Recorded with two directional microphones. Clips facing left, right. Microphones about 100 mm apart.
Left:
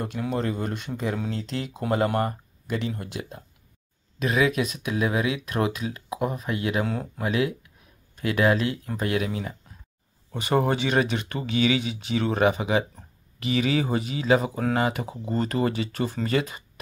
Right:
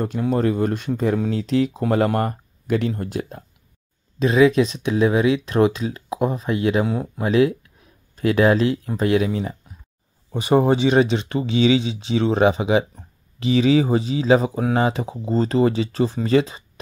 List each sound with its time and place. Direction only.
0.3 s speech: 40° right (ahead or behind)
4.2 s speech: 30° right (ahead or behind)
6.9 s speech: 20° right (ahead or behind)
7.2 s speech: 30° right (ahead or behind)